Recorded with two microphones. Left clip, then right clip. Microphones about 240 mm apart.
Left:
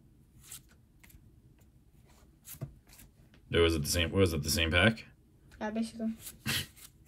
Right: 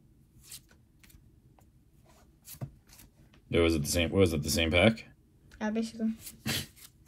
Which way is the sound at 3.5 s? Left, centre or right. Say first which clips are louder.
Right 1 dB; centre.